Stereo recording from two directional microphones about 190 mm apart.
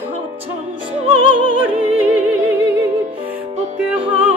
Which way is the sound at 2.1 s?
10° right (ahead or behind).